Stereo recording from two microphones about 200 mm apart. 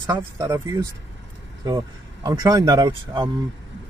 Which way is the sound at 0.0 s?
15° right (ahead or behind).